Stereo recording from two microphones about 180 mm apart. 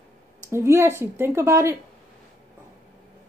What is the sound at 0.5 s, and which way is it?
A woman's voice, 15° right (ahead or behind).